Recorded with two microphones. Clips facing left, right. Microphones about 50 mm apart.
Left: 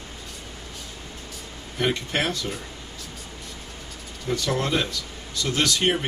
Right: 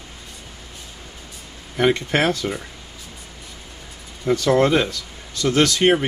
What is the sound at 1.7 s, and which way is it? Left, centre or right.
Speech, right.